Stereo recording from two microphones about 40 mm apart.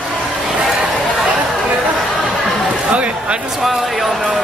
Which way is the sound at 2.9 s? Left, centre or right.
Right.